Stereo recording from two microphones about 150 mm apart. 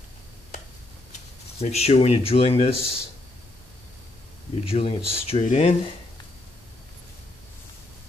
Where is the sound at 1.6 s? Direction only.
45° left (ahead or behind).